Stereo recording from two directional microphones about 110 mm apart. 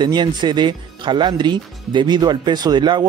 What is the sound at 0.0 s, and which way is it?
Speech, 45° right (ahead or behind).